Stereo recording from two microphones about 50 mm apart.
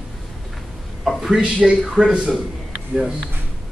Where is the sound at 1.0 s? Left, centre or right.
Centre.